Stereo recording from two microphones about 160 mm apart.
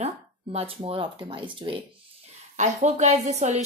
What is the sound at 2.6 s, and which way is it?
Speech, 50° right (ahead or behind).